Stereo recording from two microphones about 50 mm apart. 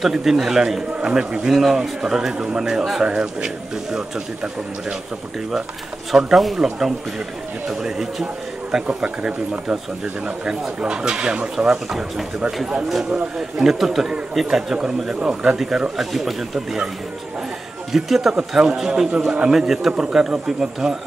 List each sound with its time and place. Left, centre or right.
0.0 s speech: centre
6.1 s speech: centre
8.8 s speech: right
11.9 s speech: centre
15.1 s speech: right
15.5 s speech: centre
17.9 s speech: centre
18.6 s speech: centre